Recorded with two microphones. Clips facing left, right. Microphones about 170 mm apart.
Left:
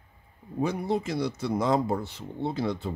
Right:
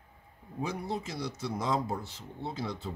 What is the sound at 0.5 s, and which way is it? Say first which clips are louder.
Speech: left 7 dB; 60° left (ahead or behind).